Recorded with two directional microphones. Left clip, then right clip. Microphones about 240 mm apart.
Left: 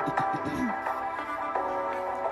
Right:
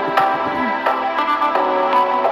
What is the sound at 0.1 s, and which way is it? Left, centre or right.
Music, right.